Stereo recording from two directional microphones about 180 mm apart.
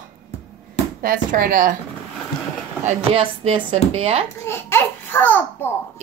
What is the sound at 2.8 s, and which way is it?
Speech, 35° right (ahead or behind).